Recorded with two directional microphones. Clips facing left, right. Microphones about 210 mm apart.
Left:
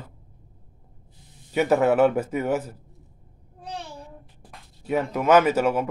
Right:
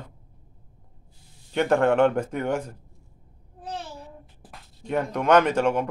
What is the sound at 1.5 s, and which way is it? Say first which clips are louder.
Speech: left 1 dB; 5° left (ahead or behind).